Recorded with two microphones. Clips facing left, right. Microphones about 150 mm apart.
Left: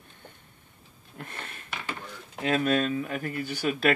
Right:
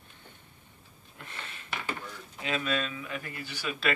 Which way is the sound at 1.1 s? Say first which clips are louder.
Left 4 dB; 50° left (ahead or behind).